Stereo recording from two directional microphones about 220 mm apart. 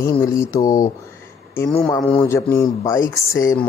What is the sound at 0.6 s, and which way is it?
Speech, 35° left (ahead or behind).